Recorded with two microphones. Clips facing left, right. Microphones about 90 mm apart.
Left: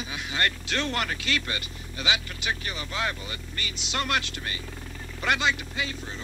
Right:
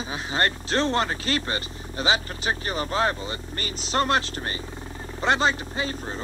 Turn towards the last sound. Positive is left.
turn(degrees=-35)  # may be behind; listen again after turning